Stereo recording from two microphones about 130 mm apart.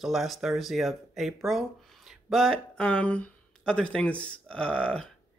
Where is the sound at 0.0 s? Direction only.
Centre (ahead or behind).